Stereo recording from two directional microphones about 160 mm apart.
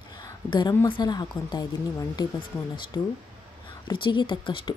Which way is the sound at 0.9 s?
25° left (ahead or behind).